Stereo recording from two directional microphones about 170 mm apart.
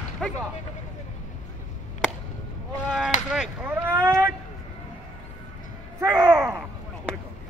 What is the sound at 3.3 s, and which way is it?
Speech, 10° right (ahead or behind).